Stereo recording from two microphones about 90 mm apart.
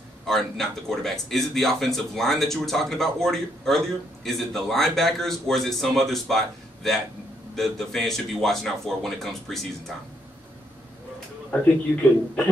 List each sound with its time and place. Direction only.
0.3 s speech: 5° left (ahead or behind)